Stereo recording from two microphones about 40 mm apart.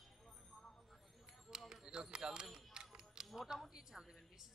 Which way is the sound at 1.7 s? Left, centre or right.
Centre.